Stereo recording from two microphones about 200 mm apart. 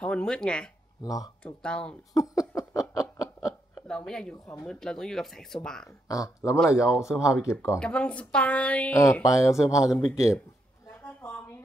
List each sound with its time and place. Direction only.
0.0 s speech: 5° left (ahead or behind)
1.0 s speech: 15° left (ahead or behind)
1.4 s speech: 5° left (ahead or behind)
2.1 s laughter: 15° left (ahead or behind)
3.4 s speech: 10° left (ahead or behind)
6.0 s speech: 15° left (ahead or behind)
10.9 s a sound: 10° left (ahead or behind)